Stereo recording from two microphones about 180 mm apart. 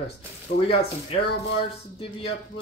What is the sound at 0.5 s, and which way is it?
Speech, 60° left (ahead or behind).